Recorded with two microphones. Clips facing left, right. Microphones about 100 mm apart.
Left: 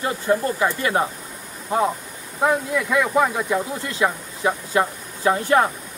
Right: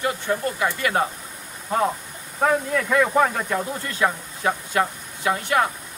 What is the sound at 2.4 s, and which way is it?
Speech, 10° left (ahead or behind).